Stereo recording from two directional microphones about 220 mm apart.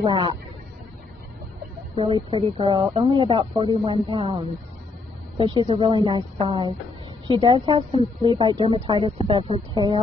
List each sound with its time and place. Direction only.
0.0 s a woman's voice: 20° right (ahead or behind)
2.0 s a woman's voice: 25° right (ahead or behind)